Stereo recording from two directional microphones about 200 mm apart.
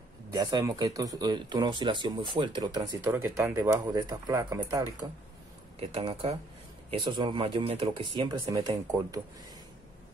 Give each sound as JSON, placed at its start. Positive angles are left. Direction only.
{"t": 0.3, "sound": "speech", "side_deg": -20}